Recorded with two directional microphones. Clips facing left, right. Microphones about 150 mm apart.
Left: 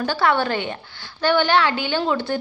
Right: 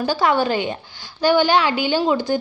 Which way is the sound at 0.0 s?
15° right (ahead or behind).